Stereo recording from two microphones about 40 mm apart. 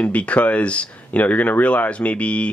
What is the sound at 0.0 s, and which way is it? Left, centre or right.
Speech, left.